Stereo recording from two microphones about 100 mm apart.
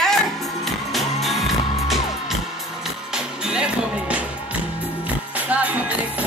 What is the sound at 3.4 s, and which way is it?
Music, 10° right (ahead or behind).